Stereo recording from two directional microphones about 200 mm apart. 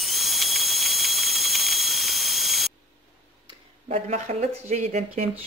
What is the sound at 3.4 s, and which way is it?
Speech, 35° right (ahead or behind).